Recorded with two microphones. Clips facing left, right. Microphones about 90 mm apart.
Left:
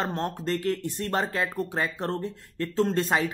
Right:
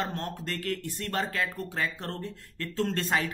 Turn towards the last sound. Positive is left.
turn(degrees=20)  # may be behind; listen again after turning